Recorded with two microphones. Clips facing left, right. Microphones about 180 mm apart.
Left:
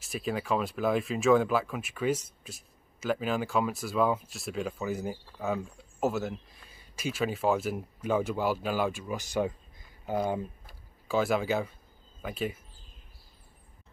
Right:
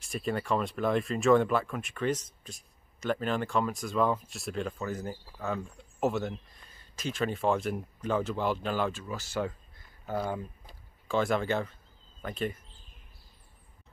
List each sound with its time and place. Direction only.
0.0 s speech: 5° left (ahead or behind)
11.1 s speech: 5° left (ahead or behind)